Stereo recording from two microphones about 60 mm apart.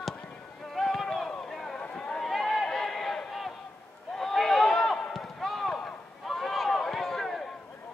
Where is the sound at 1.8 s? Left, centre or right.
Centre.